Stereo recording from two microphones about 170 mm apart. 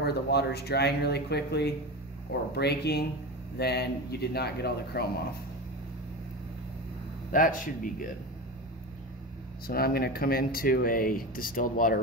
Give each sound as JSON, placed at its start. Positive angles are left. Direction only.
{"t": 0.0, "sound": "speech", "side_deg": 70}
{"t": 7.3, "sound": "speech", "side_deg": 55}
{"t": 9.7, "sound": "speech", "side_deg": 65}